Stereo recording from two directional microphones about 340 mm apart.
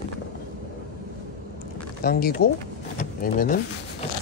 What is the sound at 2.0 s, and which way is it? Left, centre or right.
Speech, left.